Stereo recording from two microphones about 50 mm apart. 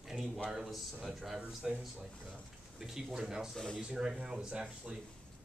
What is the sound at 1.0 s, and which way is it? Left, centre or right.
A man's voice, centre.